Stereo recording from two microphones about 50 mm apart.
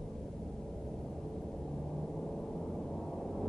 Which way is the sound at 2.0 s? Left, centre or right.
Centre.